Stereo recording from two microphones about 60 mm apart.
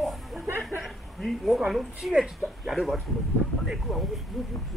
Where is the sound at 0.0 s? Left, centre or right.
Centre.